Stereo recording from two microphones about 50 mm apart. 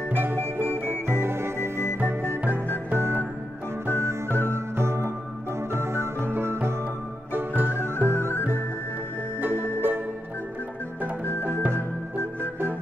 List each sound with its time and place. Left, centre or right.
0.1 s music: right
0.4 s music: right
2.0 s music: right
2.9 s music: right
7.3 s music: right
8.2 s music: left
9.4 s music: right
12.2 s music: right